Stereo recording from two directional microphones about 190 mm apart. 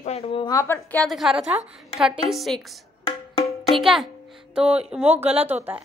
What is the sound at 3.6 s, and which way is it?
A woman's voice, centre (ahead or behind).